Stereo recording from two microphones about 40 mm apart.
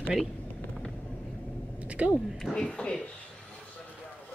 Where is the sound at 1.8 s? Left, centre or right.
Right.